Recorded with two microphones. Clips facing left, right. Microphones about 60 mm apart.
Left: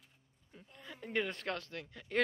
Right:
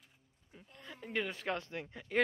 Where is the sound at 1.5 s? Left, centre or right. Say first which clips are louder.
Right 3 dB; right.